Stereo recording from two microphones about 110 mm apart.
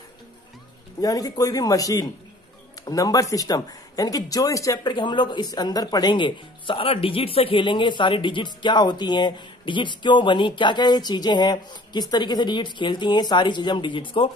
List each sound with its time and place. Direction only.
1.0 s speech: 35° left (ahead or behind)
4.9 s speech: 45° left (ahead or behind)